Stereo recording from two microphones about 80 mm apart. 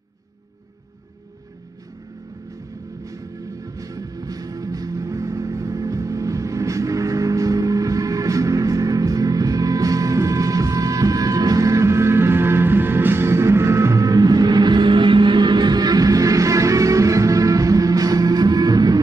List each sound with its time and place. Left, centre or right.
3.6 s music: right